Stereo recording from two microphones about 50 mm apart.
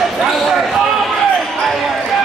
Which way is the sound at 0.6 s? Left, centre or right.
Centre.